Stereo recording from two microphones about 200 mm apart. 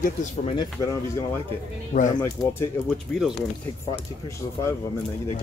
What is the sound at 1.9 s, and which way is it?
Speech, 40° left (ahead or behind).